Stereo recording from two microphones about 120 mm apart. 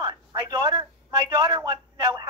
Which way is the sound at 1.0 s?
35° right (ahead or behind).